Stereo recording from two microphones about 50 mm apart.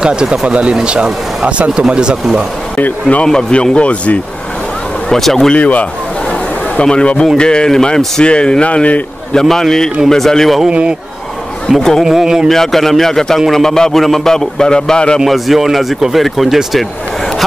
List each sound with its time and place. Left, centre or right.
0.0 s speech: centre
2.8 s speech: left
3.3 s a man's voice: centre
3.5 s speech: left
5.1 s a man's voice: centre
5.5 s a man's voice: left
9.3 s a man's voice: centre
10.7 s speech: centre
11.7 s speech: centre
12.4 s a man's voice: centre
15.1 s speech: centre